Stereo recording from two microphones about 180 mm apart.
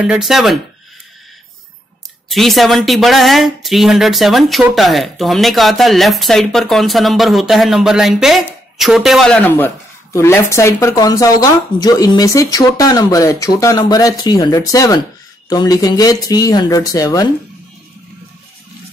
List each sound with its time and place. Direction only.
0.0 s speech: 5° right (ahead or behind)
2.2 s speech: centre (ahead or behind); by 17.3 s 20° left (ahead or behind)